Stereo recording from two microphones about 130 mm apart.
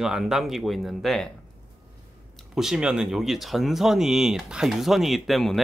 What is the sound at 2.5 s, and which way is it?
Speech, 5° right (ahead or behind).